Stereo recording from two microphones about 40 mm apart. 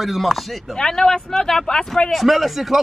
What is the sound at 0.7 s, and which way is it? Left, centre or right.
Speech, centre.